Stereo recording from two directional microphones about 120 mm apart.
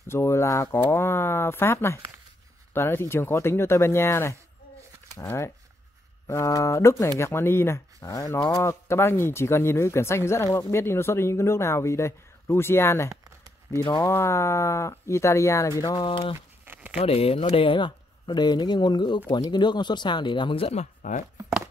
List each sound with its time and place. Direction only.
0.1 s speech: 20° left (ahead or behind)
15.8 s speech: 35° left (ahead or behind)
16.3 s a sound: 15° right (ahead or behind)
17.0 s speech: 55° left (ahead or behind); by 21.2 s 75° left (ahead or behind)